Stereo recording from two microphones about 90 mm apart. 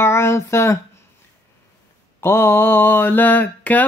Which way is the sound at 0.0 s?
25° left (ahead or behind).